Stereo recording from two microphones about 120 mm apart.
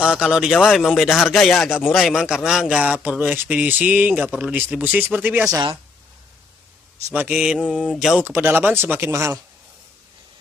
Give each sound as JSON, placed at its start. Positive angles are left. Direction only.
{"t": 0.0, "sound": "a man's voice", "side_deg": -5}
{"t": 5.5, "sound": "speech", "side_deg": -35}
{"t": 7.1, "sound": "a man's voice", "side_deg": -15}
{"t": 8.2, "sound": "a man's voice", "side_deg": -15}